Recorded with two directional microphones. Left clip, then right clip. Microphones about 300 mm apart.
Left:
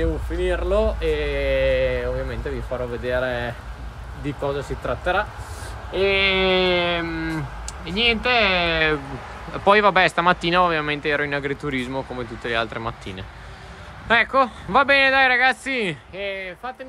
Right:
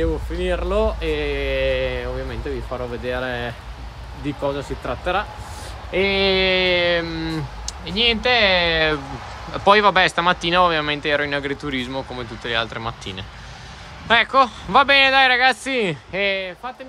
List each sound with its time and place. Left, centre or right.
0.0 s speech: centre
6.1 s speech: centre
6.4 s speech: centre
16.1 s speech: right